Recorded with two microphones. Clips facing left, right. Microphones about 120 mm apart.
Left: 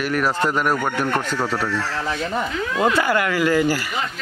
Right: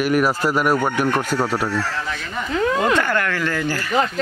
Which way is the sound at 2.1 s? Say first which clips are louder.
Left 4 dB; 30° left (ahead or behind).